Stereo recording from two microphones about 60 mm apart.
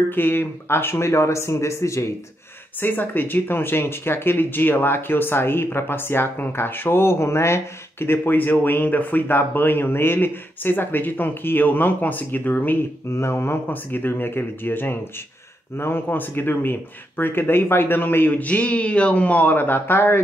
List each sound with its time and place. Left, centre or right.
0.1 s speech: left
2.8 s speech: left
13.1 s speech: left
13.7 s speech: left